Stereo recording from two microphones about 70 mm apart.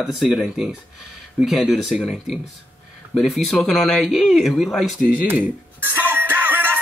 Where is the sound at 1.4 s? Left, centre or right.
Centre.